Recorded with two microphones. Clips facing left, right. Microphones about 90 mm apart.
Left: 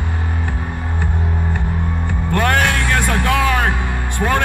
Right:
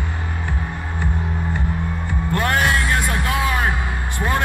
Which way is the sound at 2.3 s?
60° left (ahead or behind).